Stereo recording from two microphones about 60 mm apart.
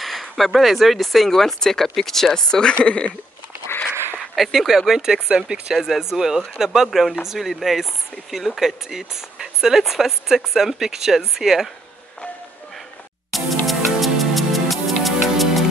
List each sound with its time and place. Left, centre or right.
0.0 s speech: centre
4.4 s speech: centre
13.3 s music: centre